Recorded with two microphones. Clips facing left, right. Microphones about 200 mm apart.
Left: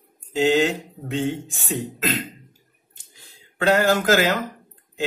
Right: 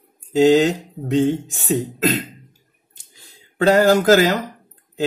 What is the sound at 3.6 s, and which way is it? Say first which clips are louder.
Speech: right 5 dB; 40° right (ahead or behind).